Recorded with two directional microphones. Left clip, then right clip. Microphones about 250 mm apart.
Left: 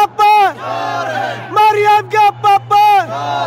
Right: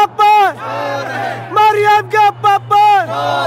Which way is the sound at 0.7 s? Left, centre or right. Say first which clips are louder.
Even; centre.